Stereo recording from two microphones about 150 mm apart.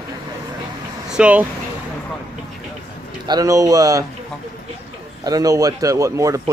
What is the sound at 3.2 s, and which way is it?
Speech, 25° right (ahead or behind).